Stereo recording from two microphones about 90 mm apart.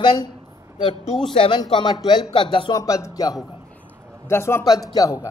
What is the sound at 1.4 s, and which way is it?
Speech, 70° left (ahead or behind).